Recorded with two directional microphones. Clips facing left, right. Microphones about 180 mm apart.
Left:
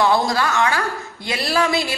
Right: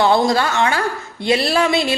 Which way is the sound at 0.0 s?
25° right (ahead or behind).